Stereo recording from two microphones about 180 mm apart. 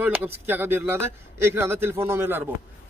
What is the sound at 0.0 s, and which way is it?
Speech, 10° right (ahead or behind).